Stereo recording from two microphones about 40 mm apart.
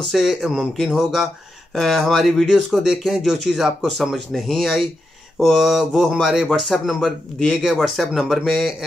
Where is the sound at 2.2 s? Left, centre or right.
Centre.